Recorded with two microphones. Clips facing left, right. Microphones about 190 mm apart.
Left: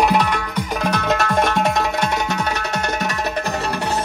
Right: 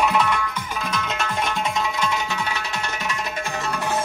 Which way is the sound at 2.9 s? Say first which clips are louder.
Left 6 dB; 40° left (ahead or behind).